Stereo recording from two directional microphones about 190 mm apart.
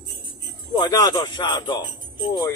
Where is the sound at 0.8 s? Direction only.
20° left (ahead or behind).